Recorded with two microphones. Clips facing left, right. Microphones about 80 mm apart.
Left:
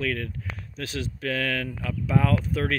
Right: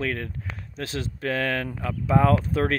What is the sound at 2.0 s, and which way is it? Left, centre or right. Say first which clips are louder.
Speech: right 4 dB; right.